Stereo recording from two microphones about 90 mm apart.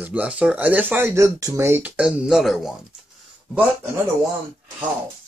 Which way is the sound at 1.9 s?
5° right (ahead or behind).